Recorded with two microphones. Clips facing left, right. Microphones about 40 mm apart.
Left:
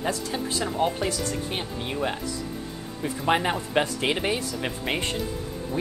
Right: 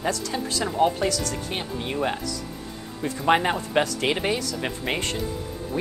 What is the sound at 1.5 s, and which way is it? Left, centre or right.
Speech, centre.